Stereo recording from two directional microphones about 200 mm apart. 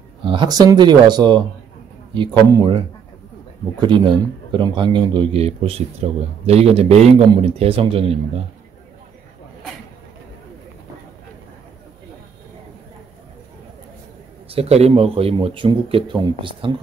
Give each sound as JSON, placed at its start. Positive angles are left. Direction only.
{"t": 0.2, "sound": "speech", "side_deg": -25}
{"t": 3.8, "sound": "speech", "side_deg": -25}
{"t": 14.5, "sound": "speech", "side_deg": -30}